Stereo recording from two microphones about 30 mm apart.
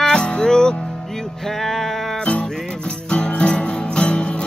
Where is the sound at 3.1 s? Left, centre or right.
Left.